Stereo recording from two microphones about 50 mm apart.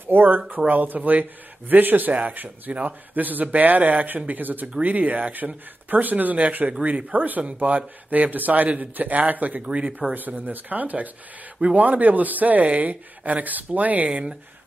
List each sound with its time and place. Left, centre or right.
0.0 s a man's voice: right
14.0 s speech: right